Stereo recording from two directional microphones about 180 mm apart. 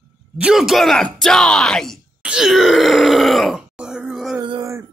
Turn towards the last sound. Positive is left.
turn(degrees=-20)  # may be behind; listen again after turning